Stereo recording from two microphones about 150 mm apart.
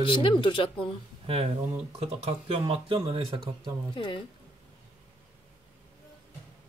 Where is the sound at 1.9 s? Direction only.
45° right (ahead or behind).